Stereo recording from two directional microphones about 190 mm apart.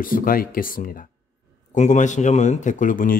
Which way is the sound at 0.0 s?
45° left (ahead or behind).